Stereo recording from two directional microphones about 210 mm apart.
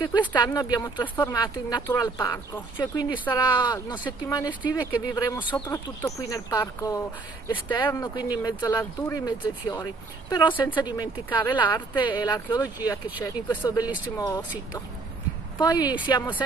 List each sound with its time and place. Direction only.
0.4 s speech: 20° left (ahead or behind)
15.6 s speech: 20° left (ahead or behind)